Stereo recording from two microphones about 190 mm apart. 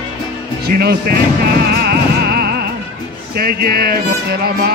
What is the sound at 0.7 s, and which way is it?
Speech, 55° right (ahead or behind).